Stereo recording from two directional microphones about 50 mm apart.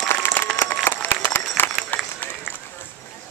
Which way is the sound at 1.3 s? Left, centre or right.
Left.